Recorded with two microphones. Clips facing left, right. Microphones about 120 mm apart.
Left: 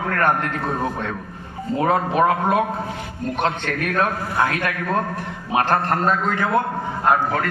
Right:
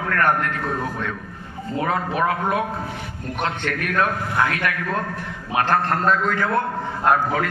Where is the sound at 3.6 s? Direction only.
20° left (ahead or behind).